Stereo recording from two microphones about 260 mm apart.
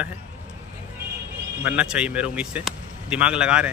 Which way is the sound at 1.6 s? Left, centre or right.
Centre.